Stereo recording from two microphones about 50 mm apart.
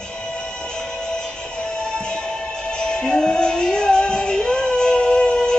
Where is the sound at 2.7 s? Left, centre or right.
Centre.